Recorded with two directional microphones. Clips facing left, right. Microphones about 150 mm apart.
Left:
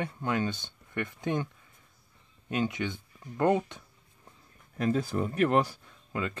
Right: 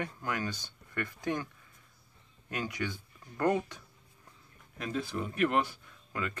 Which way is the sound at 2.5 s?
20° left (ahead or behind).